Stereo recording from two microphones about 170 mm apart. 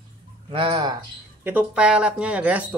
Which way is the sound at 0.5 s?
30° right (ahead or behind).